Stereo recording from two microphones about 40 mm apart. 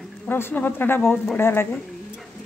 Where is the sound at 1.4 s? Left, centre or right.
Left.